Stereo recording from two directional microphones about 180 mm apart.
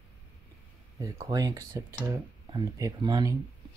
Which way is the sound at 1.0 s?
20° right (ahead or behind).